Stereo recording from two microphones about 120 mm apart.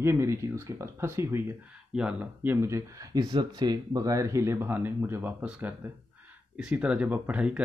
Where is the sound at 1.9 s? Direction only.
10° right (ahead or behind).